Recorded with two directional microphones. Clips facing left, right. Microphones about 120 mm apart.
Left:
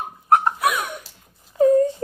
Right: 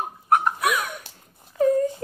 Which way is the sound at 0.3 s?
30° left (ahead or behind).